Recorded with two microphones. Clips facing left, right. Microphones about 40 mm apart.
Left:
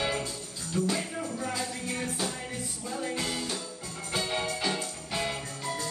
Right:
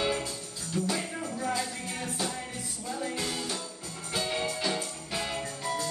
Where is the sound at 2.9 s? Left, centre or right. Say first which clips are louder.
Left 2 dB; centre.